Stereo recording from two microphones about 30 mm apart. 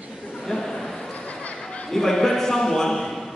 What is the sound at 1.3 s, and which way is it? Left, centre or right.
Chatter, left.